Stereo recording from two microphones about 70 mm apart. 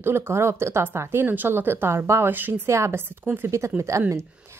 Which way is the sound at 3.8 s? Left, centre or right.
Right.